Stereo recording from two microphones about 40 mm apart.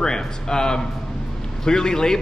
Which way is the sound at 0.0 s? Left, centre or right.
Centre.